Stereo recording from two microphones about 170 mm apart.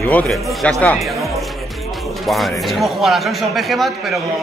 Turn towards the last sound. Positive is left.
turn(degrees=0)  # may be behind; listen again after turning